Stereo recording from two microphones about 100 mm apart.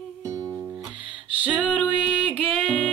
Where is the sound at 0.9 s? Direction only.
55° right (ahead or behind).